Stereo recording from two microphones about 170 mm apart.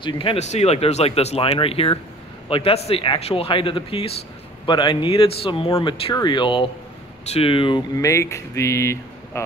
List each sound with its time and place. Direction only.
0.0 s speech: 30° left (ahead or behind); by 9.4 s 15° left (ahead or behind)